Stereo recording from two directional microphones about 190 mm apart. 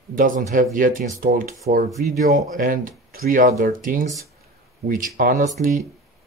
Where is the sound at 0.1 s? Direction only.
45° right (ahead or behind).